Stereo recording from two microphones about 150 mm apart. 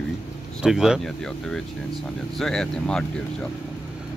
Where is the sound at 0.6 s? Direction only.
5° right (ahead or behind).